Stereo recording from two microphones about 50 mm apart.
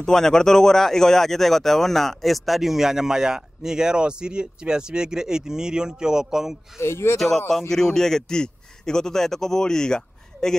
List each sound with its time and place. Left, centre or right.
0.0 s speech: centre
6.8 s speech: left
7.2 s a man's voice: centre